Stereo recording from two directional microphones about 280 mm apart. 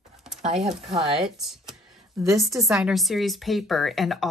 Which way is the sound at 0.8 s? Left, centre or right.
Centre.